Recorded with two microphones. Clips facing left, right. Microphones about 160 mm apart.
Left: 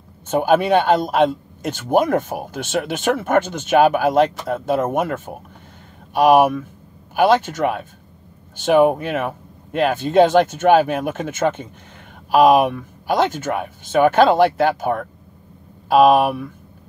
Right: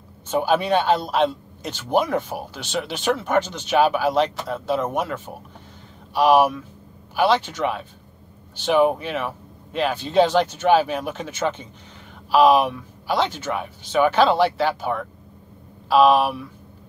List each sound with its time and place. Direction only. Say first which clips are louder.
0.3 s a man's voice: left 4 dB; 50° left (ahead or behind)